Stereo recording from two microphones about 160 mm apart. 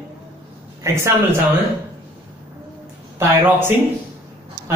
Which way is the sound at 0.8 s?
15° right (ahead or behind).